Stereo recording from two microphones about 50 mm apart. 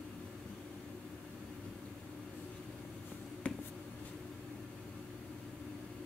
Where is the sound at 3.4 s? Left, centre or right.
Left.